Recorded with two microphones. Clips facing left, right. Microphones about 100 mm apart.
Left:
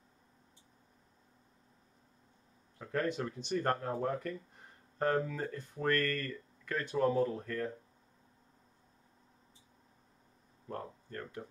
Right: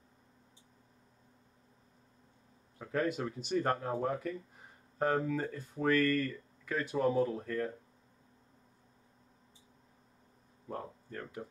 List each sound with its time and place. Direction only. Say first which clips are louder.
2.8 s speech: right 1 dB; 5° right (ahead or behind)
10.7 s speech: right 1 dB; 5° right (ahead or behind)